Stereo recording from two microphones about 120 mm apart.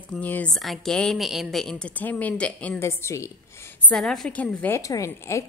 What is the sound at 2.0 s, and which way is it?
A woman's voice, 15° left (ahead or behind).